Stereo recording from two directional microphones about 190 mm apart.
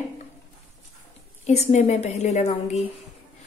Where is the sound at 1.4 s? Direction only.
35° left (ahead or behind).